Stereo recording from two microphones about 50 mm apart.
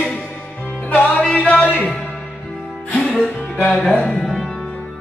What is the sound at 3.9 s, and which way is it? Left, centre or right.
Speech, centre.